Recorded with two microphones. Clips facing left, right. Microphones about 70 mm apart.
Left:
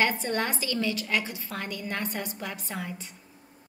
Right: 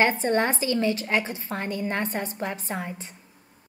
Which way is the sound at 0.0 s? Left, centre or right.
Right.